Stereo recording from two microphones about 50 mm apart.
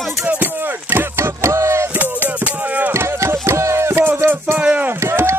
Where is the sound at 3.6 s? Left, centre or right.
Right.